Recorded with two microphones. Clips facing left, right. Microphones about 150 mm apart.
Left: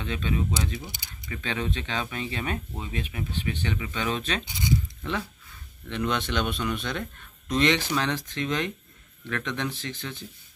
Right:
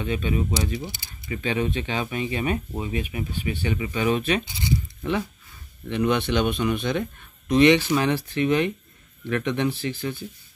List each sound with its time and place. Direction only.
0.0 s speech: 10° right (ahead or behind)
0.9 s speech: 15° left (ahead or behind)
1.3 s speech: 10° right (ahead or behind)